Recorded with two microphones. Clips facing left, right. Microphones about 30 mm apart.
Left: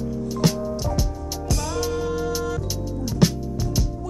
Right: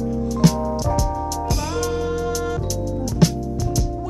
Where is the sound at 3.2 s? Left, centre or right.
Centre.